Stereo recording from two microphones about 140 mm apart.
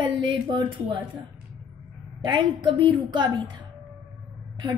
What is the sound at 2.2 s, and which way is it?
A woman's voice, 35° right (ahead or behind).